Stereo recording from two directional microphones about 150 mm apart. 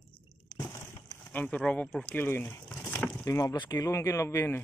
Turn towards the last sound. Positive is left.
turn(degrees=15)  # may be behind; listen again after turning